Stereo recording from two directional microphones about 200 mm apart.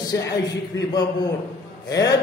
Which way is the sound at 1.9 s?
20° left (ahead or behind).